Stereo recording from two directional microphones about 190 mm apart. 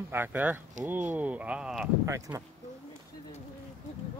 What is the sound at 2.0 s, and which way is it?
Speech, 15° right (ahead or behind).